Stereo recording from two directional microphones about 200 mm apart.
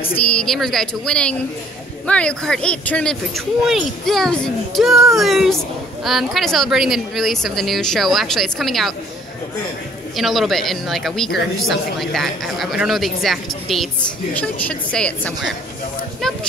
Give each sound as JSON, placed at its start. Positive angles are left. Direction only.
{"t": 0.0, "sound": "speech", "side_deg": 10}
{"t": 10.1, "sound": "speech", "side_deg": 0}